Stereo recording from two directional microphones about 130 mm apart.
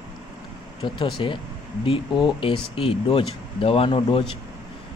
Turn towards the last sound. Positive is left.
turn(degrees=40)  # may be behind; listen again after turning